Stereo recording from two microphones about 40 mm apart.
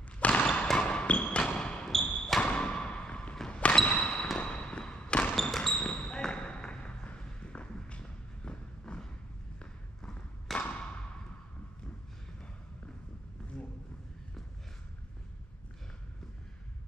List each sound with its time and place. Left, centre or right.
0.2 s basketball bounce: left
1.4 s basketball bounce: centre
1.9 s a sound: centre
2.4 s a sound: left
4.4 s fireworks: left
5.3 s basketball bounce: centre
5.7 s basketball bounce: left
6.0 s a sound: centre
10.5 s thump: centre